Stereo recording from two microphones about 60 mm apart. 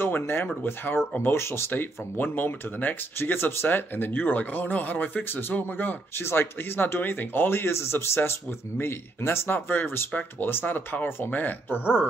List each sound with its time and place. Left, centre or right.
0.0 s speech: left
1.7 s speech: left